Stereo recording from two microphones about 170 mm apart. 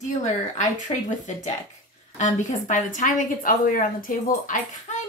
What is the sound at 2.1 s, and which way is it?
A woman's voice, 45° left (ahead or behind).